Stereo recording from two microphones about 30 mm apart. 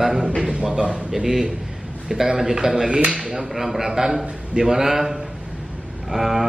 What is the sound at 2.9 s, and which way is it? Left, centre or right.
Speech, right.